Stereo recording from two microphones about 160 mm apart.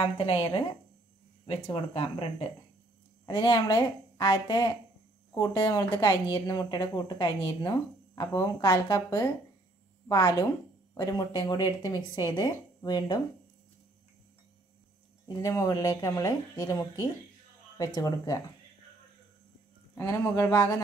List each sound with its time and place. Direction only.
0.0 s speech: 35° left (ahead or behind)
15.2 s speech: 20° left (ahead or behind)
20.0 s speech: 15° left (ahead or behind)